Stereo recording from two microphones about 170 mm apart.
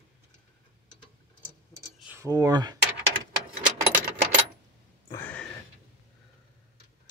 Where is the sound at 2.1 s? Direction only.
20° right (ahead or behind).